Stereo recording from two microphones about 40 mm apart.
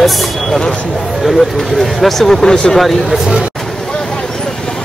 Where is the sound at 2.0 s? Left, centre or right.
Centre.